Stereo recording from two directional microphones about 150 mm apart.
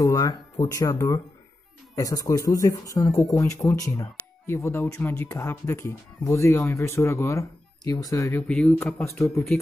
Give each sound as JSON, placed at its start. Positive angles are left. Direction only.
{"t": 0.0, "sound": "speech", "side_deg": 20}
{"t": 8.5, "sound": "speech", "side_deg": 5}